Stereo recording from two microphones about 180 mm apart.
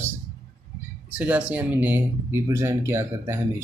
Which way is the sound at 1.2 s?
5° right (ahead or behind).